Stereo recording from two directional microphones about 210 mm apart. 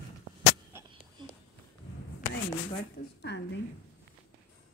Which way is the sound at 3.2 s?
55° left (ahead or behind).